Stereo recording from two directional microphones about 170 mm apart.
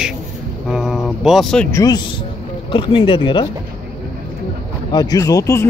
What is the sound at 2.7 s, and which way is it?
Speech, 30° left (ahead or behind).